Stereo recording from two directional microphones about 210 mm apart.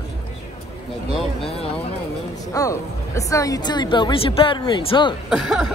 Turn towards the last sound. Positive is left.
turn(degrees=0)  # may be behind; listen again after turning